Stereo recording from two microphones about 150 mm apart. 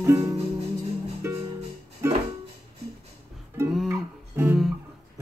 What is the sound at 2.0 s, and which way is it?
Music, 15° right (ahead or behind).